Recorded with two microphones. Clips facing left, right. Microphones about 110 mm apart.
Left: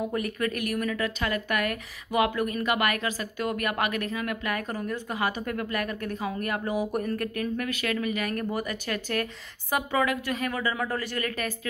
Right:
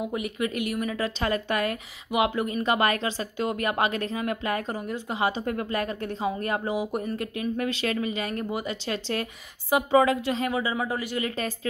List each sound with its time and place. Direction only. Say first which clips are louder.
0.0 s a woman's voice: even; 15° right (ahead or behind)